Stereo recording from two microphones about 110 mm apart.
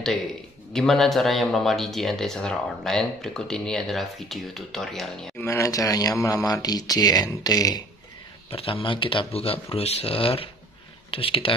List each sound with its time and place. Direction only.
0.7 s speech: 5° left (ahead or behind)
5.4 s speech: 30° left (ahead or behind)
8.5 s speech: 55° left (ahead or behind)